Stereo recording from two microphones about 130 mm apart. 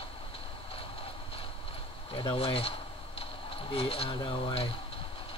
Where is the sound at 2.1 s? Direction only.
45° left (ahead or behind).